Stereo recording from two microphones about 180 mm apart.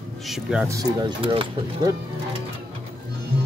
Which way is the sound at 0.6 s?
20° right (ahead or behind).